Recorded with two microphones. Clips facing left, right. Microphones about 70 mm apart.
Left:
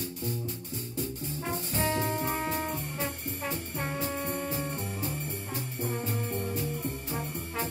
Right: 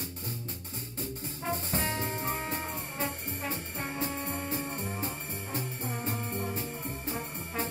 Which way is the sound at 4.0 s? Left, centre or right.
Right.